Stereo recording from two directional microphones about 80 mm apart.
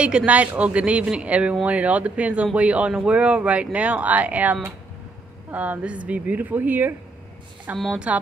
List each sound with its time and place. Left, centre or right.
0.0 s a woman's voice: centre
7.9 s speech: centre